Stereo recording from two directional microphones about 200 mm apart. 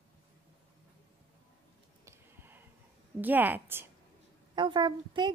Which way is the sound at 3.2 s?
10° right (ahead or behind).